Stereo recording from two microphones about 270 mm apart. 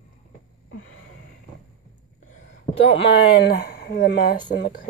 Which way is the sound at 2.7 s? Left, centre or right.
Left.